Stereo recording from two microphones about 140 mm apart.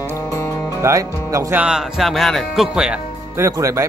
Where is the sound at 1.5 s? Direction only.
5° right (ahead or behind).